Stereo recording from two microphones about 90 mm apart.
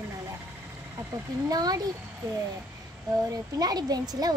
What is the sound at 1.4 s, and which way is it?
Speech, 45° right (ahead or behind).